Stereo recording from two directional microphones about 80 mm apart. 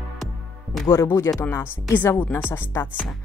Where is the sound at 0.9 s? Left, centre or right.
Left.